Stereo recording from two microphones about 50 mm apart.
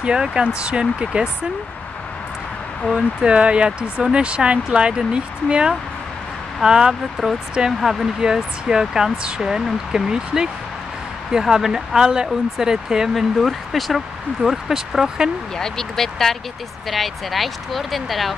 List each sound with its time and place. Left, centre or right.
0.0 s speech: centre
2.9 s speech: centre
7.2 s speech: centre
7.8 s speech: centre
13.1 s speech: centre
15.5 s speech: centre